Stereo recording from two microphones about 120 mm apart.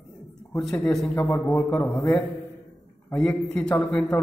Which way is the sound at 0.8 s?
5° left (ahead or behind).